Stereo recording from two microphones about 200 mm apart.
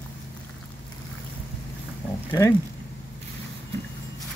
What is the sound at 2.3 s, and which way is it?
Speech, 15° left (ahead or behind).